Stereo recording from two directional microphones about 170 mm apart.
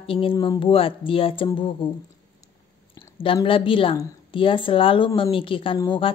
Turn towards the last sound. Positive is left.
turn(degrees=25)  # may be behind; listen again after turning